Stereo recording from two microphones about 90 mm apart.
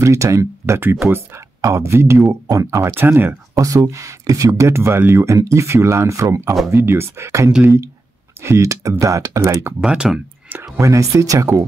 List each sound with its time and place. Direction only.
0.0 s speech: 35° right (ahead or behind)
1.6 s speech: 35° right (ahead or behind)
2.9 s speech: 25° right (ahead or behind)
3.5 s speech: 40° right (ahead or behind)
6.7 s speech: 25° right (ahead or behind)
9.8 s speech: 5° right (ahead or behind)
10.8 s speech: 35° right (ahead or behind)